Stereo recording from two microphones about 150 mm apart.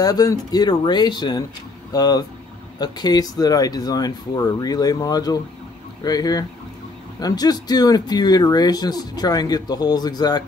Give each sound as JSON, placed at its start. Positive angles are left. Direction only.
{"t": 0.0, "sound": "speech", "side_deg": 25}